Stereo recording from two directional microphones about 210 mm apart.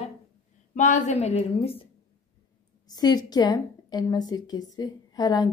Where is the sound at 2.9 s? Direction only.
20° left (ahead or behind).